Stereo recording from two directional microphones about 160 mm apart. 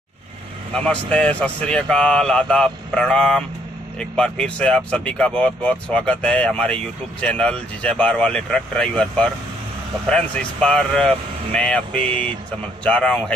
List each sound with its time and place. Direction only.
0.7 s speech: 5° left (ahead or behind)